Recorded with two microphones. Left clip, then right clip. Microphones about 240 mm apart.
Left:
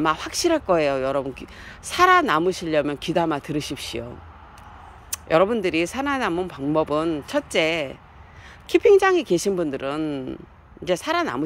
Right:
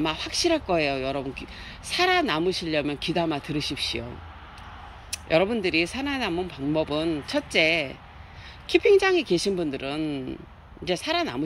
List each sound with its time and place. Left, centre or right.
0.0 s speech: centre
5.3 s speech: centre